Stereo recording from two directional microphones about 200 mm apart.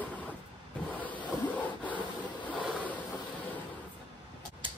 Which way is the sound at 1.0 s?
10° left (ahead or behind).